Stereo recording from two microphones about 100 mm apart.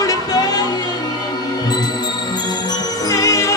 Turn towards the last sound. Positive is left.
turn(degrees=30)  # may be behind; listen again after turning